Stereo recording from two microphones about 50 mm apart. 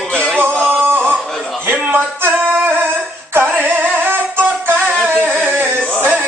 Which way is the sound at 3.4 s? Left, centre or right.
Right.